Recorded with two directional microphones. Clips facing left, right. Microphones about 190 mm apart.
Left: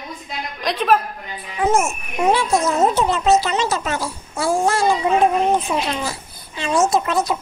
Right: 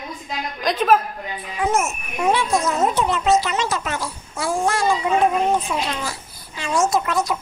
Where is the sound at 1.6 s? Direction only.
30° left (ahead or behind).